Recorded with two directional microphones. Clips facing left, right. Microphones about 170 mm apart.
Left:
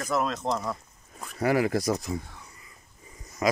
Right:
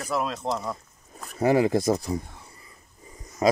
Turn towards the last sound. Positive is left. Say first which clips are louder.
# right 4 dB
turn(degrees=-30)  # may be behind; listen again after turning